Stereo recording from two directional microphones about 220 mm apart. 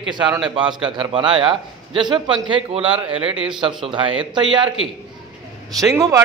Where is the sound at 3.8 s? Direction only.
25° right (ahead or behind).